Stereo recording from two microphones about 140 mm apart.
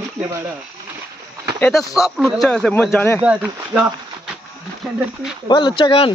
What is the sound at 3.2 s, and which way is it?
Speech, 10° right (ahead or behind).